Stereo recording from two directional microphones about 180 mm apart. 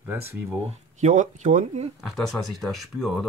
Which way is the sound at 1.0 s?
45° right (ahead or behind).